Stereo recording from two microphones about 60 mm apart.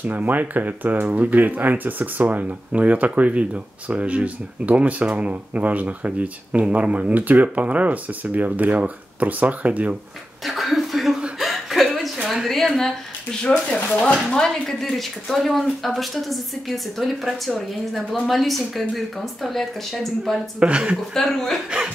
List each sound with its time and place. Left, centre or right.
0.0 s speech: right
10.4 s a sound: centre
11.3 s chuckle: centre
12.4 s a sound: centre
13.4 s speech: centre
20.5 s speech: centre
21.1 s speech: centre
21.6 s speech: centre